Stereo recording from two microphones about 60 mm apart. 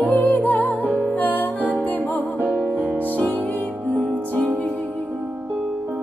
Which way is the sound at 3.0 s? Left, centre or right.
Left.